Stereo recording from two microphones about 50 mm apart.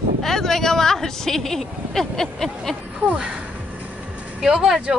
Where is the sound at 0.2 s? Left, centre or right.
Centre.